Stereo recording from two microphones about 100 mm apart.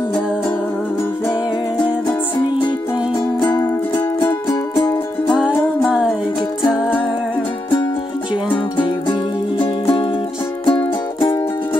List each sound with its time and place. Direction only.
1.9 s music: 45° left (ahead or behind)
5.9 s music: 10° right (ahead or behind)
8.7 s music: 55° left (ahead or behind)